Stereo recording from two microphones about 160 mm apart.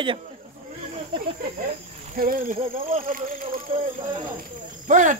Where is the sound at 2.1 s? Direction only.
60° right (ahead or behind).